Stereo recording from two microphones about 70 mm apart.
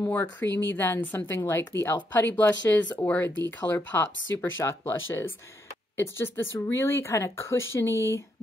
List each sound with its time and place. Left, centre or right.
0.1 s speech: left